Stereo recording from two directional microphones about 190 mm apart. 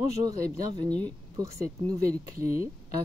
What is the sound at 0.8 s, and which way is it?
Speech, 5° left (ahead or behind).